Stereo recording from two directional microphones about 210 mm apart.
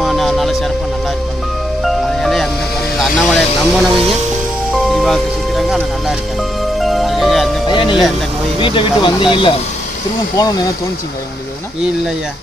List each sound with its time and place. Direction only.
0.0 s music: centre (ahead or behind)
1.8 s music: centre (ahead or behind)
3.0 s speech: centre (ahead or behind)
4.9 s speech: centre (ahead or behind)
6.8 s music: centre (ahead or behind)
7.6 s speech: 20° left (ahead or behind)